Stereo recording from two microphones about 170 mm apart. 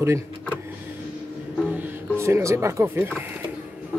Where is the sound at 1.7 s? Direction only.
15° right (ahead or behind).